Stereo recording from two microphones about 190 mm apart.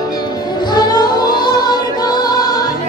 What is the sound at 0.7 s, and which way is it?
Music, 20° left (ahead or behind).